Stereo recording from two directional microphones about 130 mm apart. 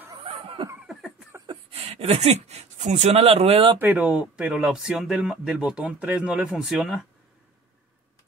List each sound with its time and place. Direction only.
0.1 s snicker: 40° right (ahead or behind)
1.4 s speech: 45° right (ahead or behind)
3.8 s speech: 10° right (ahead or behind)